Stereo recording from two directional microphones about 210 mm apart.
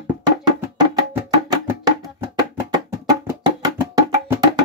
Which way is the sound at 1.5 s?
20° right (ahead or behind).